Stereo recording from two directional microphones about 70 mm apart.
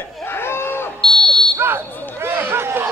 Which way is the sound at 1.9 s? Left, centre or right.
Left.